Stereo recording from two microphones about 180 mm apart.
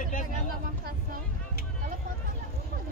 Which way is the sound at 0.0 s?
45° left (ahead or behind).